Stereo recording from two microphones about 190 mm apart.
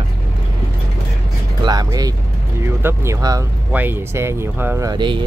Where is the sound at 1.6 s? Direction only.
20° right (ahead or behind).